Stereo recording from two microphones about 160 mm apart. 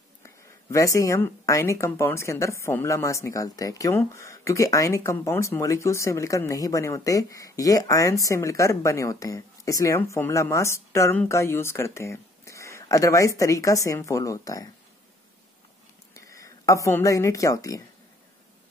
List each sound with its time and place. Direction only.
0.2 s a woman's voice: 20° left (ahead or behind)
16.2 s a woman's voice: 20° left (ahead or behind)